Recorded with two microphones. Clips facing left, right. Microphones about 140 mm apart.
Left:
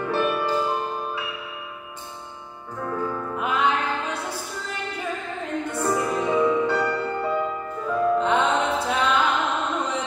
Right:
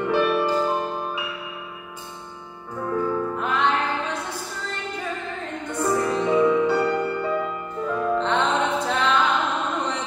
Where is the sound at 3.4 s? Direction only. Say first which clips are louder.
Left 2 dB; 10° left (ahead or behind).